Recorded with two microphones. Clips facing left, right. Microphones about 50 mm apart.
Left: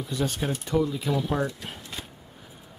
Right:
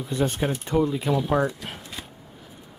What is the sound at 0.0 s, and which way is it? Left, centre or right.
Speech, right.